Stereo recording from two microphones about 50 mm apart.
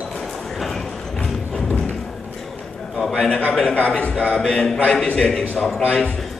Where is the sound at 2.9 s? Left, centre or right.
Centre.